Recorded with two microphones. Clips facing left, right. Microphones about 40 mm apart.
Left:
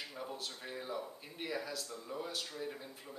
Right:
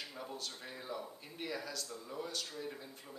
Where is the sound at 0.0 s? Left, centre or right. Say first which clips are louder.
Left 1 dB; centre.